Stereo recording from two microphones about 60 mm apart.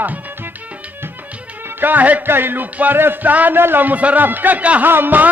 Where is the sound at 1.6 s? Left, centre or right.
Right.